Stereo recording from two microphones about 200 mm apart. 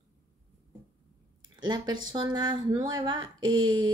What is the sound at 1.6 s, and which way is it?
A woman's voice, 20° right (ahead or behind).